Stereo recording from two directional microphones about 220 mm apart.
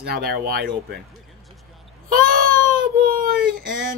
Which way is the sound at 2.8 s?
40° right (ahead or behind).